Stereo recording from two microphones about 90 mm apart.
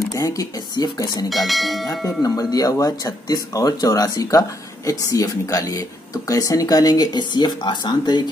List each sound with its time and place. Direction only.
0.1 s speech: 40° left (ahead or behind)
0.8 s speech: 50° left (ahead or behind)
1.3 s bell: centre (ahead or behind)
2.0 s speech: 45° left (ahead or behind)